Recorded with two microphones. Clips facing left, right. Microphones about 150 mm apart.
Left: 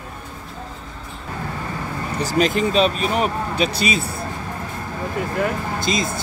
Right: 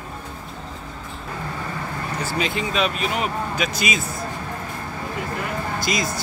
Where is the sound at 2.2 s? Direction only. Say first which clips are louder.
Left 7 dB; 40° left (ahead or behind).